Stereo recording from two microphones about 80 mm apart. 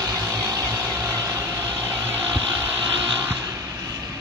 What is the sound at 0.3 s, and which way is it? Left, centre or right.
Vehicle, right.